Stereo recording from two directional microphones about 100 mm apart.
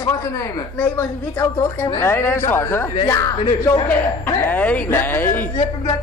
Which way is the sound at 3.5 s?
40° left (ahead or behind).